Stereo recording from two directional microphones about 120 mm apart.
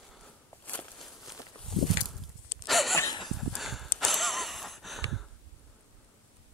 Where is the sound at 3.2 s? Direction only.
Centre (ahead or behind).